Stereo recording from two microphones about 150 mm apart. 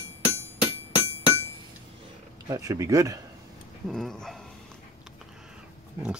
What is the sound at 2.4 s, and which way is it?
Speech, 25° right (ahead or behind).